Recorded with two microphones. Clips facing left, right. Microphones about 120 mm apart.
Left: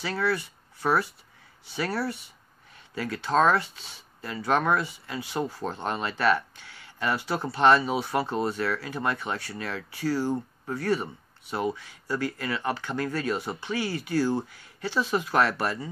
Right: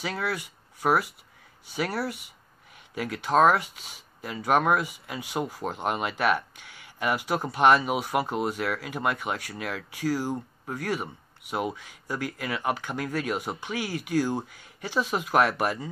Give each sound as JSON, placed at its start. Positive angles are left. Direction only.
{"t": 0.0, "sound": "speech", "side_deg": -15}